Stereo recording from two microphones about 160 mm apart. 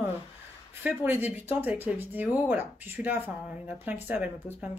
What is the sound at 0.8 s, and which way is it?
Speech, 10° right (ahead or behind).